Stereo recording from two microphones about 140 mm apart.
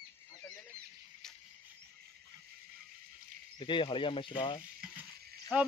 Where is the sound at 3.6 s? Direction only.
35° left (ahead or behind).